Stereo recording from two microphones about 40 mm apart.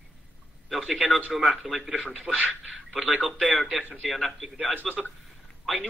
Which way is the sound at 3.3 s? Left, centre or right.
Centre.